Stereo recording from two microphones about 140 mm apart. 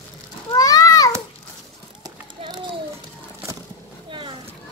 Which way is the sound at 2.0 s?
30° right (ahead or behind).